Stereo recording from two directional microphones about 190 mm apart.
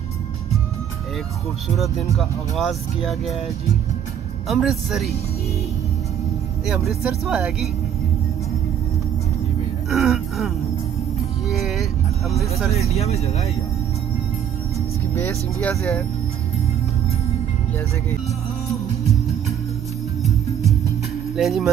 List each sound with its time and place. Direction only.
1.8 s speech: centre (ahead or behind)
4.5 s speech: centre (ahead or behind)
6.6 s speech: centre (ahead or behind)
9.8 s speech: centre (ahead or behind)
11.4 s music: centre (ahead or behind)
12.7 s speech: 35° left (ahead or behind)
15.1 s speech: 10° left (ahead or behind)
21.4 s speech: centre (ahead or behind)